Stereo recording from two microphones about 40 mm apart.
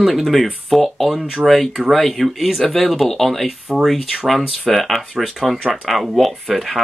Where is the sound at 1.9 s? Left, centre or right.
Centre.